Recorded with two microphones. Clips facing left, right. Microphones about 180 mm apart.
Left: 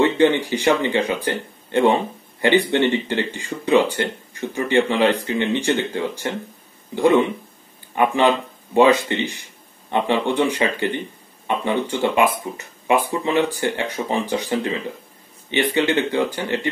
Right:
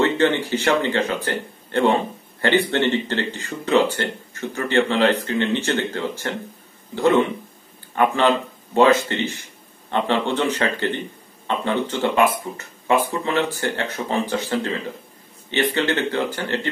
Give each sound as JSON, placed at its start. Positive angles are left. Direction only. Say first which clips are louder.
{"t": 0.0, "sound": "speech", "louder": "left 2 dB", "side_deg": 15}